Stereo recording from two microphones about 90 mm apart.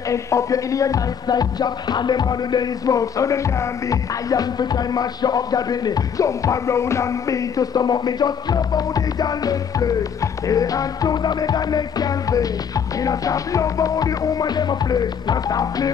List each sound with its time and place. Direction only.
0.1 s music: 35° left (ahead or behind)